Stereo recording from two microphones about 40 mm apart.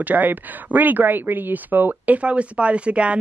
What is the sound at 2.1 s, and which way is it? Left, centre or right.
A woman's voice, right.